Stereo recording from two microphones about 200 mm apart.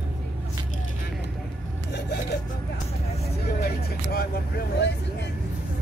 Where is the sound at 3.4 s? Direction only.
50° left (ahead or behind).